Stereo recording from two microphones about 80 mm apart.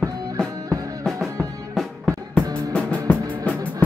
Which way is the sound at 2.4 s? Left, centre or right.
Centre.